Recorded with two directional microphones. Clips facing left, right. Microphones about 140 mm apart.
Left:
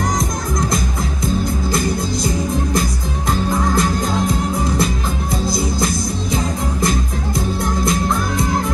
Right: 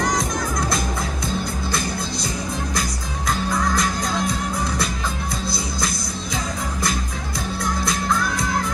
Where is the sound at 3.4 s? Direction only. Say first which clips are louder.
Left 4 dB; 25° left (ahead or behind).